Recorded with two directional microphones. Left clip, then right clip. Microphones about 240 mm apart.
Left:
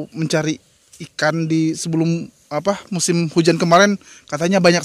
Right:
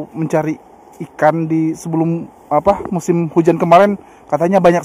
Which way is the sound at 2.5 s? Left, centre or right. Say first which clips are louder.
Right 7 dB; left.